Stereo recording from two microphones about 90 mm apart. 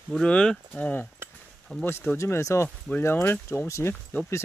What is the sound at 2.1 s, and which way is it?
Speech, 35° left (ahead or behind).